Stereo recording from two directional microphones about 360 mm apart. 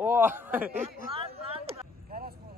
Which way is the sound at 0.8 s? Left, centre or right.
Centre.